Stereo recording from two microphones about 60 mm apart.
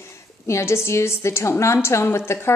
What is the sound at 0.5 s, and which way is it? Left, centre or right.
A woman's voice, left.